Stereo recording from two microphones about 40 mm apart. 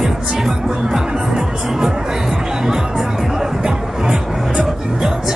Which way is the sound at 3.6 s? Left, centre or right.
Centre.